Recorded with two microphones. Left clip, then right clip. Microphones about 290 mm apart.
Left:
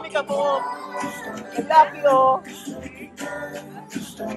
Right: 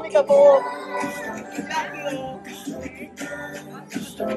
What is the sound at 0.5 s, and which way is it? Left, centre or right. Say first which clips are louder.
Music: right 5 dB; left.